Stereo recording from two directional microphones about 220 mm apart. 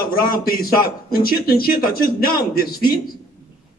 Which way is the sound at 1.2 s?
40° left (ahead or behind).